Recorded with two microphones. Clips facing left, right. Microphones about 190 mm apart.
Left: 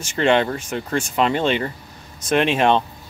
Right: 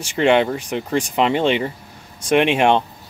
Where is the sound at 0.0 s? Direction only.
15° right (ahead or behind).